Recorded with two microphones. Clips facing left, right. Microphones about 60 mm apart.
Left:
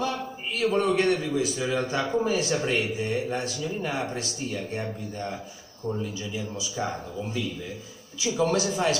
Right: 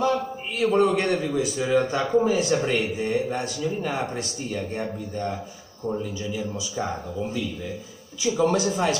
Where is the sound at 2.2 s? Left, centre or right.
Right.